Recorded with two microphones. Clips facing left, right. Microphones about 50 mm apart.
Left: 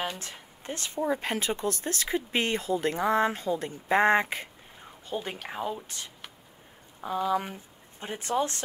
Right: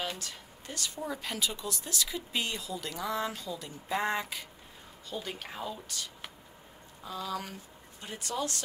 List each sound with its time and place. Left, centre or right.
0.2 s speech: left